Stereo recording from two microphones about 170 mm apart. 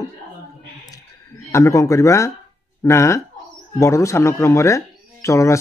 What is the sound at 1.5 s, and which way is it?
A man's voice, 20° left (ahead or behind).